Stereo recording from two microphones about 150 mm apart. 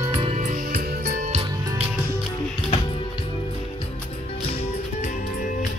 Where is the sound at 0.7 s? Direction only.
90° right.